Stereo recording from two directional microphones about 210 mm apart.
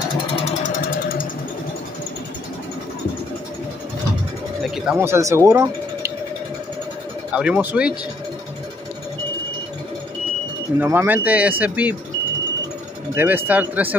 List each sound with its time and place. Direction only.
4.6 s a sound: centre (ahead or behind)
4.9 s speech: 10° right (ahead or behind)
7.3 s speech: 5° right (ahead or behind)
10.8 s speech: 10° right (ahead or behind)
13.1 s speech: 10° right (ahead or behind)